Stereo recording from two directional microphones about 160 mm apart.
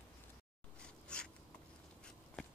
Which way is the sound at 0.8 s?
5° left (ahead or behind).